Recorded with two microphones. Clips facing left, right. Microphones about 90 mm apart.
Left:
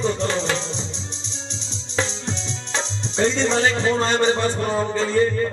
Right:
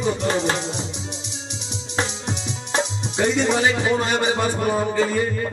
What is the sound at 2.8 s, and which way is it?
Speech, 15° right (ahead or behind).